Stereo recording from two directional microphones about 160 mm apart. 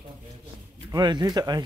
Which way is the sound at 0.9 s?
25° right (ahead or behind).